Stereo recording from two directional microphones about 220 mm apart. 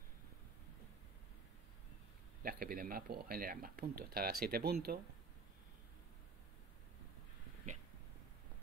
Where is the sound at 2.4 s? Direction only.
40° right (ahead or behind).